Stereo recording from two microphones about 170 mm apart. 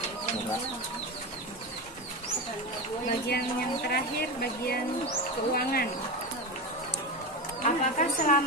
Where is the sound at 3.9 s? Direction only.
65° left (ahead or behind).